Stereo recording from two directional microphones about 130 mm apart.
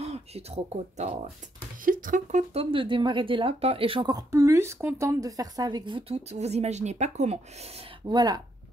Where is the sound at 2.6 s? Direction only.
40° right (ahead or behind).